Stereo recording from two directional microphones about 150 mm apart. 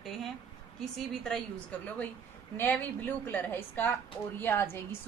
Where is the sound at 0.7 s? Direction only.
5° left (ahead or behind).